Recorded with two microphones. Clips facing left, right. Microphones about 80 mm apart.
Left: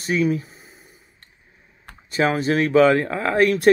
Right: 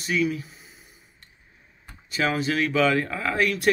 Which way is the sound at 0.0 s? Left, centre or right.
Left.